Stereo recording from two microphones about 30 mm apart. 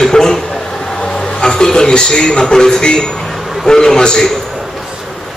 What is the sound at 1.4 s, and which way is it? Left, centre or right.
A man's voice, left.